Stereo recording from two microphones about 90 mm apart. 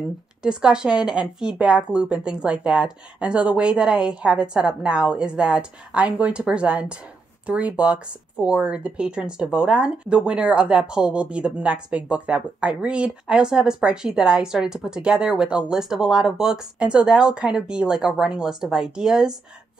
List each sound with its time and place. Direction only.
0.4 s speech: 10° right (ahead or behind)